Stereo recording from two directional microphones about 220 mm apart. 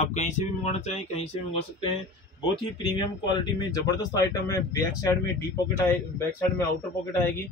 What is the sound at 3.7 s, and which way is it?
A man's voice, 15° left (ahead or behind).